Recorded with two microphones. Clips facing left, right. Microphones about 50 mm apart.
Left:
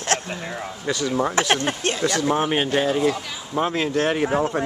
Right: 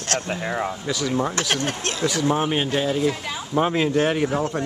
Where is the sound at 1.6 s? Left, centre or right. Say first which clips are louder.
Left 2 dB; left.